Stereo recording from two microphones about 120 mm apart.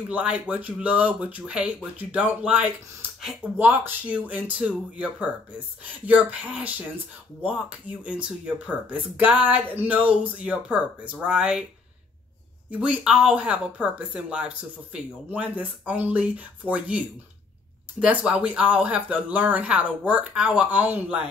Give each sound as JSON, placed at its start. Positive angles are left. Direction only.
{"t": 0.1, "sound": "speech", "side_deg": -10}
{"t": 12.7, "sound": "speech", "side_deg": -10}
{"t": 18.0, "sound": "speech", "side_deg": -10}